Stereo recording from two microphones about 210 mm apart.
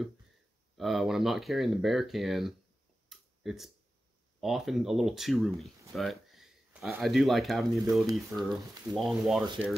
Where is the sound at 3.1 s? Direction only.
Centre (ahead or behind).